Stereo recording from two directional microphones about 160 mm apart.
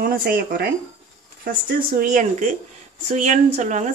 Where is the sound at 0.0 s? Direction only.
65° right (ahead or behind).